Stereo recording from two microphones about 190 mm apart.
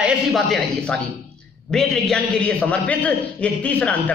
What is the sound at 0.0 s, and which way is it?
A man's voice, centre (ahead or behind).